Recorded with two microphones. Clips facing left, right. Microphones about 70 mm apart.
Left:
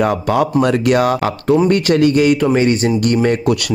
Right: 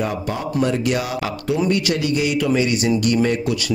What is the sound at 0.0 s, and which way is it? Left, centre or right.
Speech, left.